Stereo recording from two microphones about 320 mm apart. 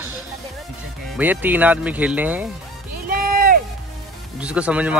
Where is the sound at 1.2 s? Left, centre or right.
Centre.